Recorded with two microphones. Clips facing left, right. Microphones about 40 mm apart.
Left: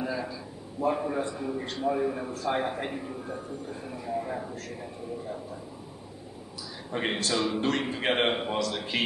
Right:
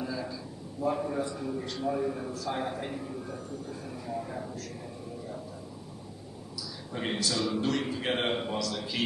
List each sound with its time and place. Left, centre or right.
0.0 s a sound: left
0.7 s a man's voice: left
6.9 s a man's voice: left